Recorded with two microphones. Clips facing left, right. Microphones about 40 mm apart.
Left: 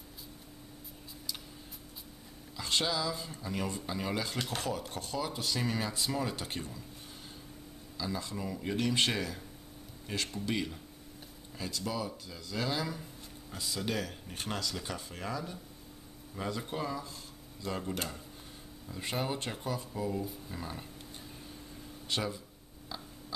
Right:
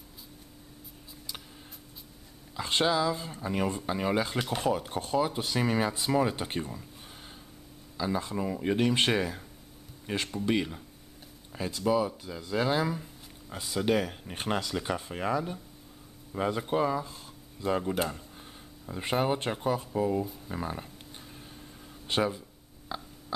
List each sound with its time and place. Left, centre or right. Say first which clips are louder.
2.5 s speech: right 6 dB; right
8.0 s speech: right 6 dB; right
18.9 s speech: right 7 dB; right
22.0 s speech: right 7 dB; right
22.9 s a sound: right 6 dB; right